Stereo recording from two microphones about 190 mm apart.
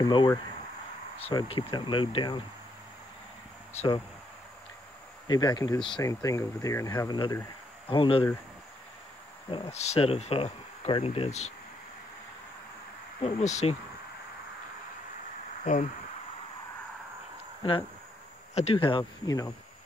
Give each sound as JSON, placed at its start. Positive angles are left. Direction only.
{"t": 0.0, "sound": "speech", "side_deg": 25}
{"t": 3.7, "sound": "speech", "side_deg": 30}
{"t": 5.3, "sound": "speech", "side_deg": 20}
{"t": 9.5, "sound": "speech", "side_deg": 30}
{"t": 13.2, "sound": "speech", "side_deg": 35}
{"t": 15.6, "sound": "speech", "side_deg": 40}
{"t": 18.5, "sound": "speech", "side_deg": 35}